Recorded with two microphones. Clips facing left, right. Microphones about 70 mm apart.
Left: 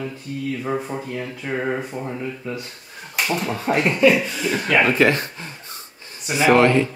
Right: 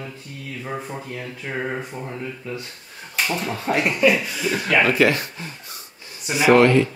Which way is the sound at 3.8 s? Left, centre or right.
Centre.